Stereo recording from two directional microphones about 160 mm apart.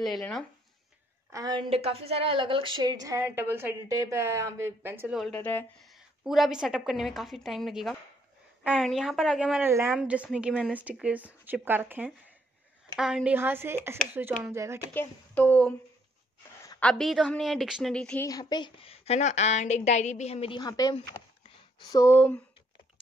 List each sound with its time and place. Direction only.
0.0 s a woman's voice: centre (ahead or behind)
1.3 s a woman's voice: 25° right (ahead or behind)
3.3 s speech: 10° right (ahead or behind)
5.2 s speech: 10° left (ahead or behind)
5.8 s a woman's voice: centre (ahead or behind); by 14.8 s 15° right (ahead or behind)
15.0 s speech: 10° left (ahead or behind)
16.8 s a woman's voice: centre (ahead or behind)
18.2 s a woman's voice: 25° left (ahead or behind)